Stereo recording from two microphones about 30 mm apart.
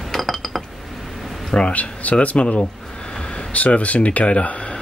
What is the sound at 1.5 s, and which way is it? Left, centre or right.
Speech, left.